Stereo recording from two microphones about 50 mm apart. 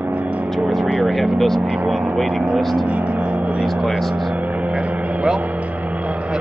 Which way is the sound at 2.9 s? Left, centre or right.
Right.